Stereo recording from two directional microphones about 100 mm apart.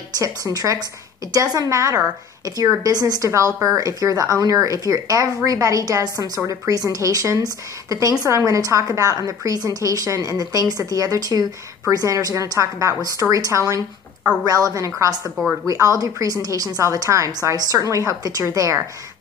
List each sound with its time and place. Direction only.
0.2 s a woman's voice: 35° right (ahead or behind)